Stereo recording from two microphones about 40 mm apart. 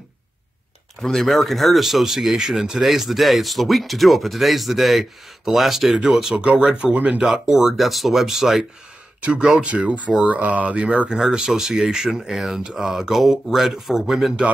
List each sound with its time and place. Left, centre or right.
1.0 s speech: centre
6.3 s speech: right
7.2 s speech: centre
9.2 s speech: right
11.1 s speech: centre